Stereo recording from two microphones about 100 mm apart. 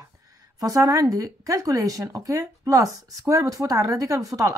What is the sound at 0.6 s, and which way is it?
Speech, 35° right (ahead or behind).